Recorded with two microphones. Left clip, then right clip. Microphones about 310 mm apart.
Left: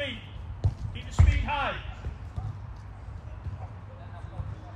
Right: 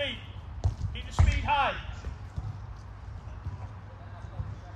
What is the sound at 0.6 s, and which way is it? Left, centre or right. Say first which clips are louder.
Basketball bounce: even; centre.